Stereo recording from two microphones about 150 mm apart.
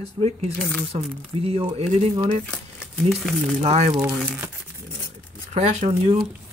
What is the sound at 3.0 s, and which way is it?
Speech, centre (ahead or behind).